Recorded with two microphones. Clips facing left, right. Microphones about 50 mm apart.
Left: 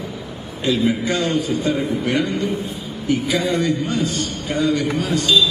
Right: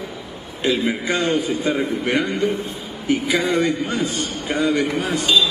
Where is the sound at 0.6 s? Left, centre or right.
Centre.